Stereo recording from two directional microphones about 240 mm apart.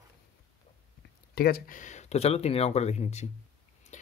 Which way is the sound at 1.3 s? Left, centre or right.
Left.